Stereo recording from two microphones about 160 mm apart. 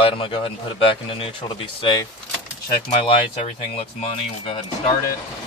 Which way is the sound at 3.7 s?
35° left (ahead or behind).